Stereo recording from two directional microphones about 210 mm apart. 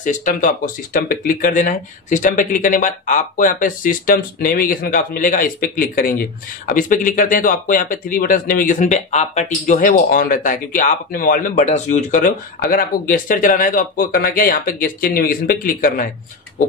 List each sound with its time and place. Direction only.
0.0 s speech: 40° left (ahead or behind)